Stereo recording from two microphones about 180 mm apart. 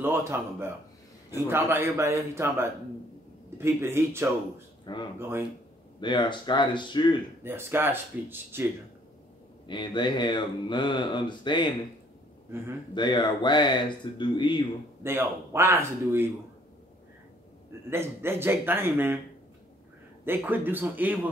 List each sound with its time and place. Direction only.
0.0 s speech: 15° right (ahead or behind)
4.9 s speech: 25° left (ahead or behind)
7.4 s speech: 10° right (ahead or behind)
9.7 s speech: 25° left (ahead or behind)
12.9 s speech: 25° left (ahead or behind)
15.0 s speech: 15° right (ahead or behind)
17.8 s speech: 15° right (ahead or behind)
20.2 s speech: 10° right (ahead or behind)